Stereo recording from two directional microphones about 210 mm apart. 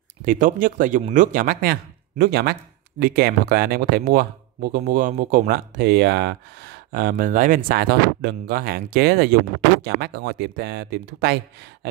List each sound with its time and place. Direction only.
0.2 s speech: 40° right (ahead or behind)